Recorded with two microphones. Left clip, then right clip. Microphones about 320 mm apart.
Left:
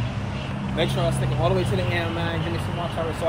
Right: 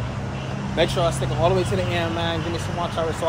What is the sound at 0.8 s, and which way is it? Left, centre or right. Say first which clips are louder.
A man's voice: right 4 dB; centre.